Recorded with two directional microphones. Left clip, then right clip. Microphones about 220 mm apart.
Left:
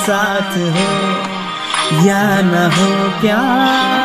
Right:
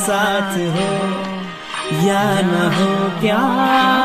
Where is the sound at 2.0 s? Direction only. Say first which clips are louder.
Even; 20° left (ahead or behind).